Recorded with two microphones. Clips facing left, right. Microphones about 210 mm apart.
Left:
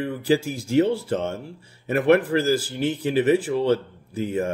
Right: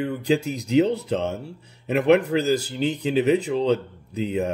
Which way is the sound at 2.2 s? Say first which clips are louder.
Even; 90° left.